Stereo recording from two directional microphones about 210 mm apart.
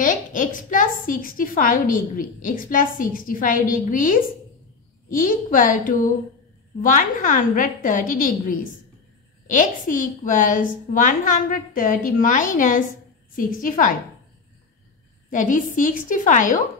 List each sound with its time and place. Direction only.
0.0 s a woman's voice: 40° left (ahead or behind)
15.2 s a woman's voice: 35° left (ahead or behind)